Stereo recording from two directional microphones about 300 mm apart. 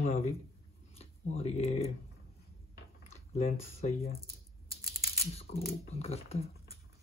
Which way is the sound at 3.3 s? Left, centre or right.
Left.